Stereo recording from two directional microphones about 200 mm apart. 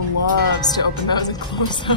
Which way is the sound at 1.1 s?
20° left (ahead or behind).